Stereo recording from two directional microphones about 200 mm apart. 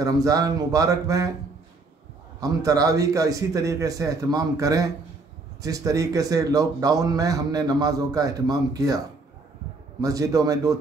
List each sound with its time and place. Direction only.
0.0 s a man's voice: 20° right (ahead or behind)
2.4 s a man's voice: 15° right (ahead or behind)
10.0 s a man's voice: 15° right (ahead or behind)